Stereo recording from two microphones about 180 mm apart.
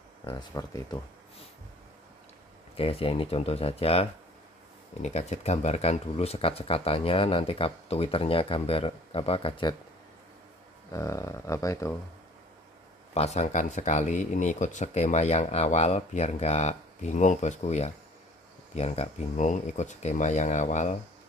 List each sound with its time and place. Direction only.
0.2 s speech: 25° left (ahead or behind)
2.7 s speech: 30° left (ahead or behind)
10.9 s speech: 15° left (ahead or behind)
13.1 s speech: 35° left (ahead or behind)